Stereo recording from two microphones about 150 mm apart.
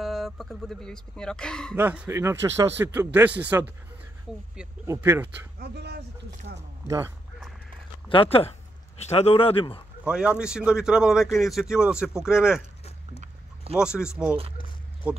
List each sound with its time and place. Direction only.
0.0 s speech: centre (ahead or behind)
1.8 s a man's voice: 15° right (ahead or behind)
4.8 s a man's voice: 15° right (ahead or behind)
5.6 s speech: 90° right
8.1 s speech: 35° left (ahead or behind)
10.0 s speech: 5° right (ahead or behind)
13.7 s speech: 5° right (ahead or behind)